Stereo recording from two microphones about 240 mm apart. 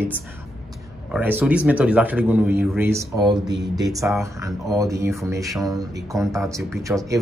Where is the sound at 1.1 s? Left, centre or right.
Centre.